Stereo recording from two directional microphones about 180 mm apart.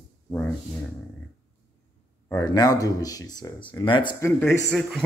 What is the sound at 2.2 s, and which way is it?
Speech, 20° left (ahead or behind).